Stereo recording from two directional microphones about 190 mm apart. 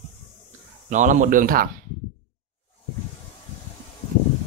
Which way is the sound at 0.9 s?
40° right (ahead or behind).